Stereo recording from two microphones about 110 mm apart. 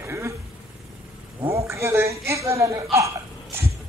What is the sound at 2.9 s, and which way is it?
Hiccup, 25° right (ahead or behind).